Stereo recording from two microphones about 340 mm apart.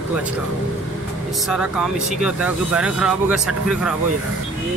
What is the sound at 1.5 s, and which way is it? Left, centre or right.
Speech, centre.